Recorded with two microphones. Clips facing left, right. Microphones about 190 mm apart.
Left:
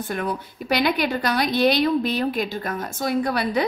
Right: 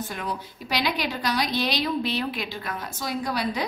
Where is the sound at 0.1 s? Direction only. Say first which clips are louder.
Left 6 dB; 55° left (ahead or behind).